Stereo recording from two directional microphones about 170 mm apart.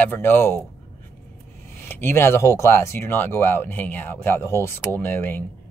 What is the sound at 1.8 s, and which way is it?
Speech, 15° left (ahead or behind).